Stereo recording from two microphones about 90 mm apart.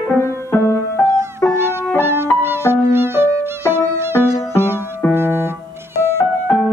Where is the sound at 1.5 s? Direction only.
30° right (ahead or behind).